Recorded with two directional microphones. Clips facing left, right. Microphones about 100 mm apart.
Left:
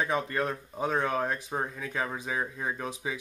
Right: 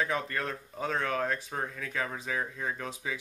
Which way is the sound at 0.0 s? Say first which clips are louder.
Left 3 dB; 20° left (ahead or behind).